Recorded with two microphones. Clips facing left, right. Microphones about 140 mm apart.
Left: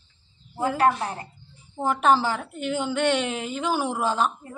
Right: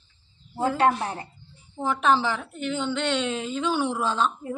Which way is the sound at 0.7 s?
25° right (ahead or behind).